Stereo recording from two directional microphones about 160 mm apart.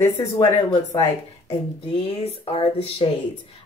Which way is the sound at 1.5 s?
35° left (ahead or behind).